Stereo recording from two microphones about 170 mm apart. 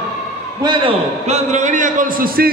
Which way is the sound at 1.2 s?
40° right (ahead or behind).